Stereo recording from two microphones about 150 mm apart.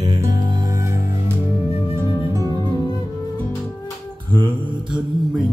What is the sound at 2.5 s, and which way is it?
Music, 25° left (ahead or behind).